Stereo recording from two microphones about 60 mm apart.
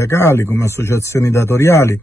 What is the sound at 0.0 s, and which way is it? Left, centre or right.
A man's voice, left.